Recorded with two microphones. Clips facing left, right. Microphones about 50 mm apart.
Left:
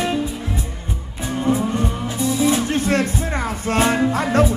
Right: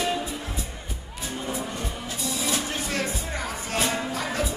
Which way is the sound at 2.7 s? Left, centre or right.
Left.